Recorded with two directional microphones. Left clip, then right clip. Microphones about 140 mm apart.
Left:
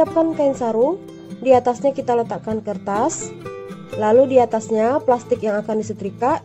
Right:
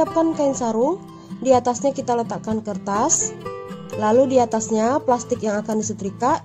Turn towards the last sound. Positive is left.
turn(degrees=5)  # may be behind; listen again after turning